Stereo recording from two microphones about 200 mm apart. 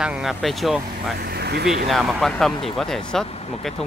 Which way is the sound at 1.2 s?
55° right (ahead or behind).